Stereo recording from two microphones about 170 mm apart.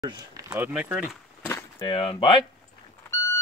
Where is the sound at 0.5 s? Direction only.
10° right (ahead or behind).